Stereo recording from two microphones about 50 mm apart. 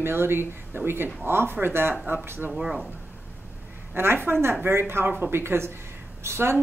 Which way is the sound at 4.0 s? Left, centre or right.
Right.